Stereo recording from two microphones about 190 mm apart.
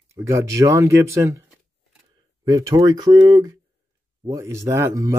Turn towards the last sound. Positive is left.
turn(degrees=-15)  # may be behind; listen again after turning